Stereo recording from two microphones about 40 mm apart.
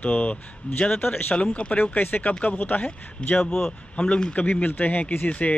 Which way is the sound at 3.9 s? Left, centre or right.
Left.